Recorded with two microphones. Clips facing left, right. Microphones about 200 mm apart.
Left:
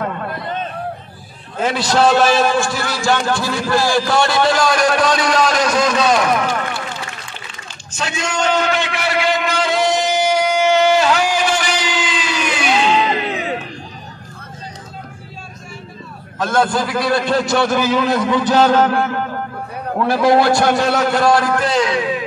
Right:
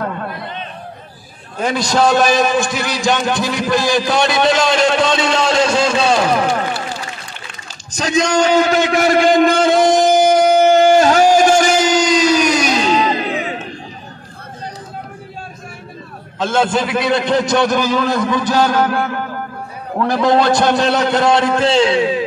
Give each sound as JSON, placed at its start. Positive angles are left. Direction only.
{"t": 1.6, "sound": "a man's voice", "side_deg": -15}
{"t": 7.9, "sound": "a sound", "side_deg": -40}
{"t": 16.3, "sound": "a man's voice", "side_deg": -25}
{"t": 17.7, "sound": "a man's voice", "side_deg": 10}
{"t": 20.1, "sound": "a man's voice", "side_deg": -20}
{"t": 20.7, "sound": "a man's voice", "side_deg": 5}
{"t": 21.1, "sound": "a man's voice", "side_deg": -20}